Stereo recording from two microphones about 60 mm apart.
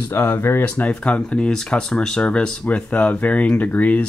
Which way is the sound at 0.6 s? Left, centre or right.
Left.